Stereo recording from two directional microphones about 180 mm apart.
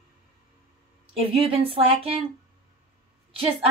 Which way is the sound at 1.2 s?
30° right (ahead or behind).